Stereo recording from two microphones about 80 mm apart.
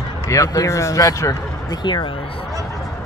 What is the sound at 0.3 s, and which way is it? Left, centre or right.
Speech, left.